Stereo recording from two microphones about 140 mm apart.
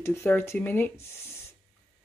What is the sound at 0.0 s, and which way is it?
Speech, 20° left (ahead or behind).